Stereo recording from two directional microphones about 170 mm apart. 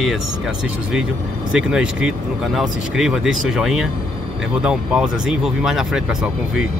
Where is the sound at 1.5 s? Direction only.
5° right (ahead or behind).